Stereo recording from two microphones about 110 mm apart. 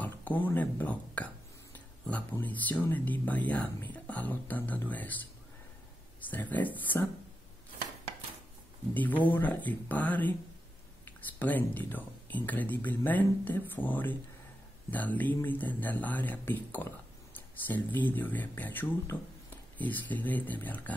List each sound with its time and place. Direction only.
0.0 s speech: 15° left (ahead or behind)
6.3 s speech: 15° left (ahead or behind)
8.9 s speech: 15° left (ahead or behind)